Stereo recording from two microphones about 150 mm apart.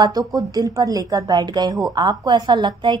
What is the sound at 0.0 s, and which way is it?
A woman's voice, 25° right (ahead or behind).